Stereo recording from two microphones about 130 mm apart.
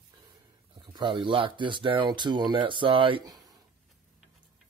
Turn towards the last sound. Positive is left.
turn(degrees=-30)  # may be behind; listen again after turning